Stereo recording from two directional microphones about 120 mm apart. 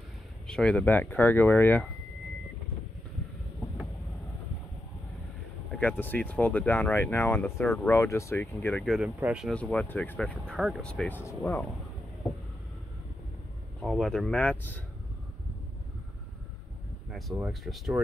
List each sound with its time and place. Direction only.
0.5 s speech: 10° left (ahead or behind)
5.7 s speech: 10° left (ahead or behind)
7.6 s speech: centre (ahead or behind)
7.9 s speech: 25° left (ahead or behind)
8.8 s speech: centre (ahead or behind)
9.5 s speech: 10° left (ahead or behind)
10.5 s speech: centre (ahead or behind); by 11.6 s 15° left (ahead or behind)
13.7 s speech: centre (ahead or behind)
17.5 s speech: centre (ahead or behind)